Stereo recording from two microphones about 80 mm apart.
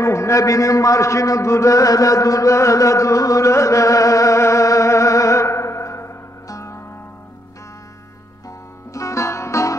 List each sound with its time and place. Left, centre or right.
0.0 s a man's voice: left
8.9 s music: left